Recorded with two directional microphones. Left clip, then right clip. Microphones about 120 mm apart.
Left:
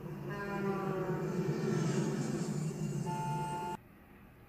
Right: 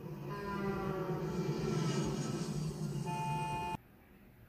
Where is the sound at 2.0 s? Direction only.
20° right (ahead or behind).